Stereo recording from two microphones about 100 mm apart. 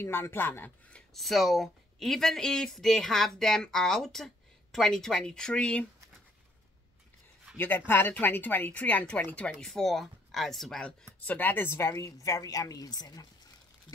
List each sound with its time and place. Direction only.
0.0 s speech: 25° left (ahead or behind)
1.1 s speech: centre (ahead or behind)
7.5 s speech: 20° left (ahead or behind)
11.1 s a woman's voice: 15° left (ahead or behind); by 13.3 s 40° left (ahead or behind)